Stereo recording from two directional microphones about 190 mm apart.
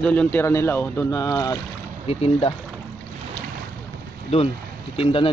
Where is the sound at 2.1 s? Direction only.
30° left (ahead or behind).